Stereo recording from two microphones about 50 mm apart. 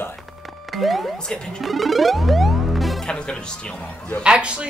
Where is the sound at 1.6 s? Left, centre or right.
Centre.